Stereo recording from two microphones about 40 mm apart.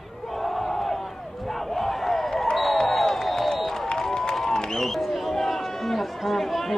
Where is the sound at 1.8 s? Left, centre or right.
Centre.